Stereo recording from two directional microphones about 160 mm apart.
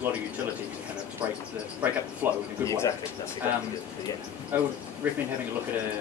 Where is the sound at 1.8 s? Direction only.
10° right (ahead or behind).